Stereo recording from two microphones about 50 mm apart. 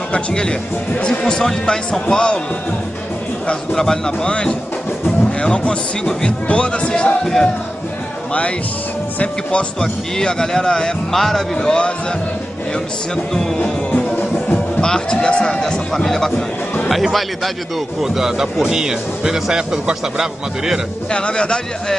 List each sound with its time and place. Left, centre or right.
0.1 s speech: centre
3.7 s speech: centre
8.3 s speech: left
10.1 s speech: centre
13.1 s speech: centre
14.8 s speech: centre
18.0 s speech: centre
21.1 s speech: centre